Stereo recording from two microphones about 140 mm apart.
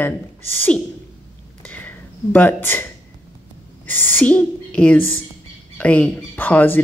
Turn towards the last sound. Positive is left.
turn(degrees=15)  # may be behind; listen again after turning